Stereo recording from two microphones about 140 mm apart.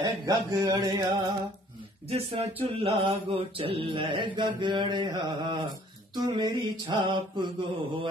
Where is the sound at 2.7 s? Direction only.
45° right (ahead or behind).